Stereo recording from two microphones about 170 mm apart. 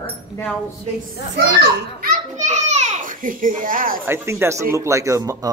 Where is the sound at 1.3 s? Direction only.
80° right.